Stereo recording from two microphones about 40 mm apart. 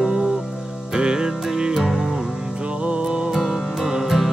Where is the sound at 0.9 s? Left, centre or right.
Centre.